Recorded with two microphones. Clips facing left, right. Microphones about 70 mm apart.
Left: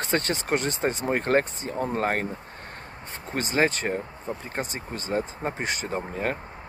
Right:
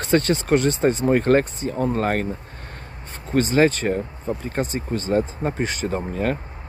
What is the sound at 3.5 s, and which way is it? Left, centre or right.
Speech, left.